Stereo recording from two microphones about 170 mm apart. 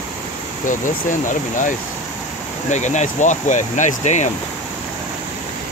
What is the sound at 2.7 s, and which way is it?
Speech, 45° left (ahead or behind).